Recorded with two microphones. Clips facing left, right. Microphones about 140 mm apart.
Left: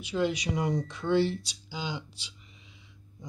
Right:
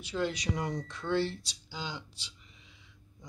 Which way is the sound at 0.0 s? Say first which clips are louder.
Left 4 dB; 10° left (ahead or behind).